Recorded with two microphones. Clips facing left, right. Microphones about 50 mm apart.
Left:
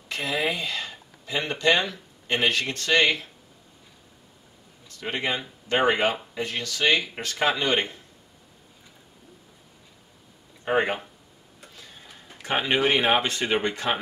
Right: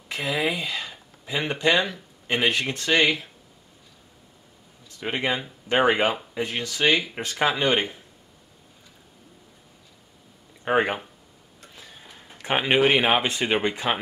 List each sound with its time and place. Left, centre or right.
0.1 s speech: centre
5.0 s speech: centre
10.6 s speech: centre
12.4 s speech: right